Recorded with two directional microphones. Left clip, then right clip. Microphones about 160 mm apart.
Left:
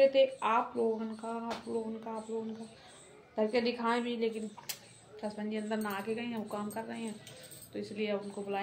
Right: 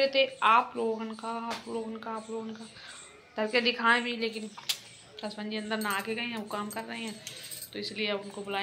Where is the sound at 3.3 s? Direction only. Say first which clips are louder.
Right 4 dB; 20° left (ahead or behind).